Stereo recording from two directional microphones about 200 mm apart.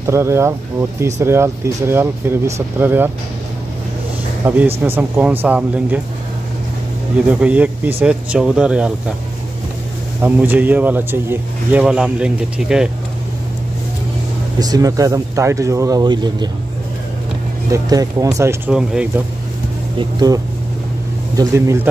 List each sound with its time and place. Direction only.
0.0 s speech: 15° right (ahead or behind)
4.4 s speech: 10° right (ahead or behind)
7.2 s speech: 5° right (ahead or behind)
10.2 s speech: 10° right (ahead or behind)
14.6 s speech: 20° right (ahead or behind)
17.7 s speech: 15° right (ahead or behind)
20.0 s speech: 20° right (ahead or behind)
21.4 s speech: 15° right (ahead or behind)